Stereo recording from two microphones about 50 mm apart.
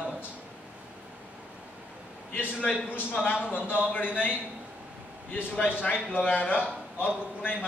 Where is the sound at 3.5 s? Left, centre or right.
Left.